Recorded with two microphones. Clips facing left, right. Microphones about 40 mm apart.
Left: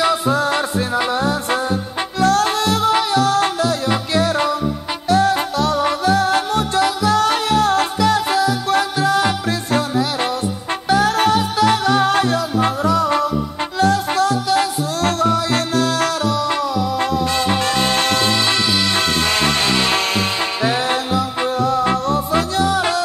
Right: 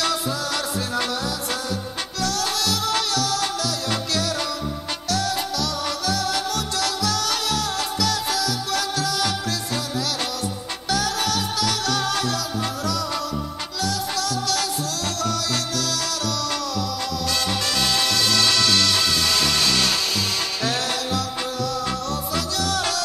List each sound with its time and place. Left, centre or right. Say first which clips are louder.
0.3 s music: left 8 dB; left
3.3 s music: left 8 dB; left
18.9 s music: left 4 dB; left